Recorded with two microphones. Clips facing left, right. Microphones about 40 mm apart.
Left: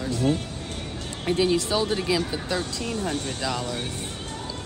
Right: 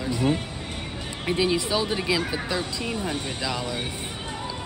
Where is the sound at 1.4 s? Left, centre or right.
Centre.